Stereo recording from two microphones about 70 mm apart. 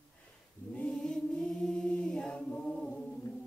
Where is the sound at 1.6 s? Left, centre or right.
Centre.